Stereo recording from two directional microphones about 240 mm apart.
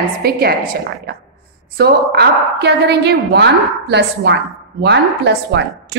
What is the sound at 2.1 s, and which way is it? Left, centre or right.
A woman's voice, right.